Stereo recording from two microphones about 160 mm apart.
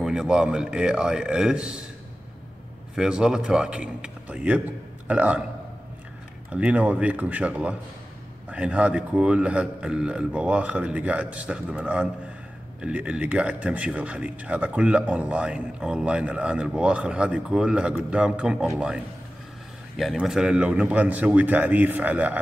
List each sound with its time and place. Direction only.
0.0 s a man's voice: 5° right (ahead or behind)
3.0 s a man's voice: 5° right (ahead or behind)
6.5 s speech: 5° right (ahead or behind)
20.0 s speech: centre (ahead or behind)